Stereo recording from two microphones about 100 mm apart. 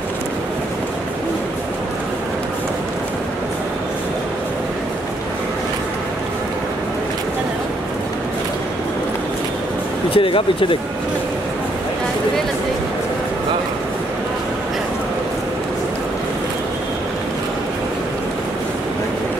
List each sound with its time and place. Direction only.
10.1 s speech: 60° left (ahead or behind)